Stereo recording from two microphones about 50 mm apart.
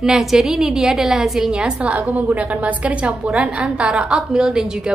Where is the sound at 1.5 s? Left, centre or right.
Right.